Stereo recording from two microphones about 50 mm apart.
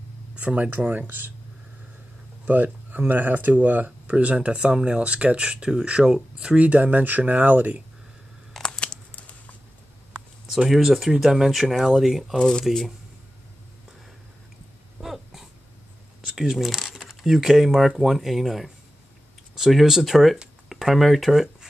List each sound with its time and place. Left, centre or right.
0.4 s speech: right
0.7 s speech: right
2.4 s speech: right
8.6 s crumpling: centre
10.5 s speech: centre
12.4 s speech: centre
12.6 s speech: centre
15.0 s a sound: centre
16.3 s speech: centre